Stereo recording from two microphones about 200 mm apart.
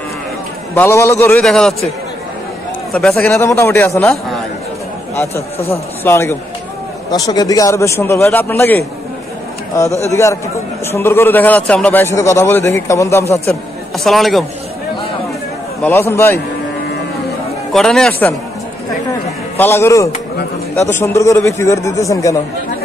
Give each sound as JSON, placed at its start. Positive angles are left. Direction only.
{"t": 0.7, "sound": "a man's voice", "side_deg": 15}
{"t": 2.9, "sound": "a man's voice", "side_deg": 0}
{"t": 5.1, "sound": "a man's voice", "side_deg": 15}
{"t": 13.9, "sound": "speech", "side_deg": 0}
{"t": 15.8, "sound": "a man's voice", "side_deg": 10}
{"t": 17.7, "sound": "speech", "side_deg": 5}
{"t": 19.5, "sound": "a man's voice", "side_deg": 10}